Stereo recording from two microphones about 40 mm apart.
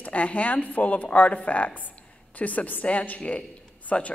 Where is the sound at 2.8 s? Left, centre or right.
Left.